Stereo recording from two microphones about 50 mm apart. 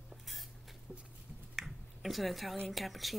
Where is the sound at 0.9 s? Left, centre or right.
Centre.